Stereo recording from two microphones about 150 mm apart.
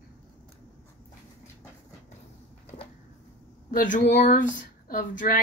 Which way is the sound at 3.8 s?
60° left (ahead or behind).